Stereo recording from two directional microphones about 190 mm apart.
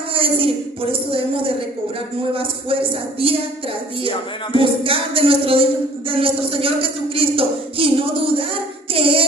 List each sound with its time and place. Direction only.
0.1 s a sound: 30° right (ahead or behind)
0.9 s speech: 30° right (ahead or behind)
4.6 s speech: 30° right (ahead or behind)
8.9 s music: 30° right (ahead or behind)